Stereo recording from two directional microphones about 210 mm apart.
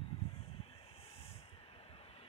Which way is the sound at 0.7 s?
25° left (ahead or behind).